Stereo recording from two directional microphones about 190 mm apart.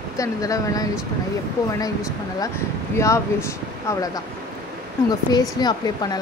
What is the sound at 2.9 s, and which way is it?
Speech, 15° left (ahead or behind).